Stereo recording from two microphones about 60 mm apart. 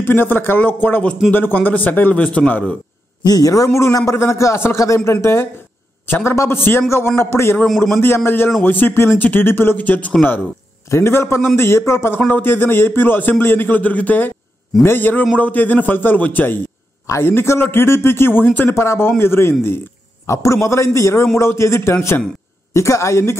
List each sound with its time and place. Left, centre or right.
0.0 s a man's voice: left
3.3 s a man's voice: left
10.9 s a man's voice: left
18.8 s a man's voice: left
20.2 s a man's voice: left